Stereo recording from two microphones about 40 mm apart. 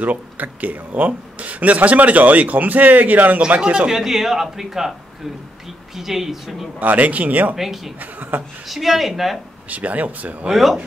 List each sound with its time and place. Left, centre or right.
0.0 s speech: right
3.3 s a man's voice: right
3.9 s a man's voice: centre
5.9 s a man's voice: centre
6.8 s speech: right
7.5 s speech: centre
8.0 s speech: right
8.6 s speech: centre
9.7 s speech: right
10.5 s speech: centre